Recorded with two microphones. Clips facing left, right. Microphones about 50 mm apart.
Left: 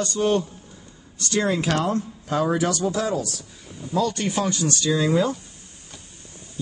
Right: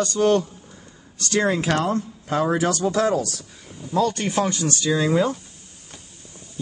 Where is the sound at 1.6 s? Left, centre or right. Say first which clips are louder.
Right 1 dB; right.